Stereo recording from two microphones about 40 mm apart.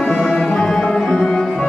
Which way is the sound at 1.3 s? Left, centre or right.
Centre.